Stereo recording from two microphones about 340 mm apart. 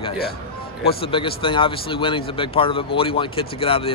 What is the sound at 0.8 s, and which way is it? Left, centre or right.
Speech, centre.